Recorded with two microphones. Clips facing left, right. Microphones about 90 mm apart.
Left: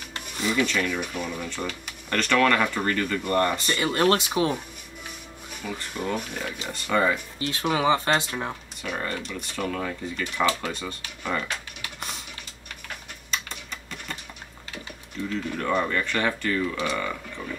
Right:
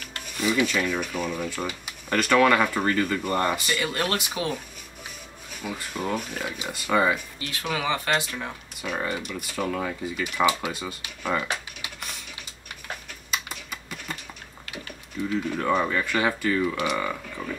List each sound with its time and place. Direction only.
0.4 s speech: 10° right (ahead or behind)
3.7 s speech: 25° left (ahead or behind)
5.6 s speech: 5° right (ahead or behind)
7.3 s speech: 30° left (ahead or behind)
8.8 s speech: 5° right (ahead or behind)
13.3 s typing: 5° right (ahead or behind)
15.2 s speech: 10° right (ahead or behind)